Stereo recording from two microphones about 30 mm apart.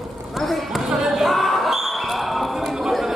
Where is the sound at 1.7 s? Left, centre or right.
Centre.